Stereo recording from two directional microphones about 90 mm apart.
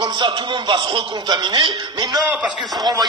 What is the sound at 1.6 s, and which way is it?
Speech, 65° right (ahead or behind).